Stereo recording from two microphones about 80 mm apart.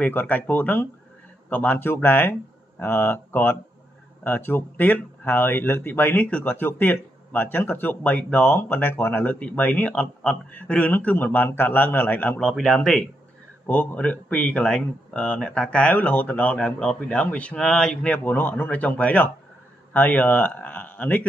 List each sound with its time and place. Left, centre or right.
0.0 s speech: left; by 13.0 s centre
13.7 s speech: centre
18.2 s speech: left